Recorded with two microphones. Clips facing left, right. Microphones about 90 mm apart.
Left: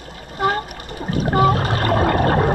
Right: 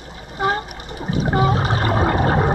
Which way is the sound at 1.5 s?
20° right (ahead or behind).